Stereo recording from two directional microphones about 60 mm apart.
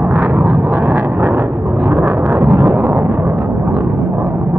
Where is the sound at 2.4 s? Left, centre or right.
Right.